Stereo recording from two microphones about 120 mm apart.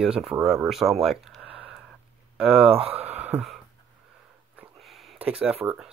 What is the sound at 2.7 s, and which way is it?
Speech, 55° right (ahead or behind).